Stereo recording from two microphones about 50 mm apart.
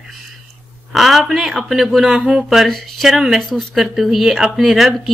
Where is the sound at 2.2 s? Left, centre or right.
Centre.